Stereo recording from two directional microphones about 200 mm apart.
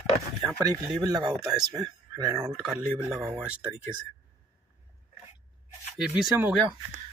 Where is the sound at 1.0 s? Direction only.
20° right (ahead or behind).